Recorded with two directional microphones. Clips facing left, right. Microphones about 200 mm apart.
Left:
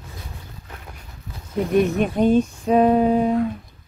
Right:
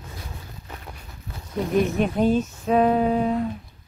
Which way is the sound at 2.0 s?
5° right (ahead or behind).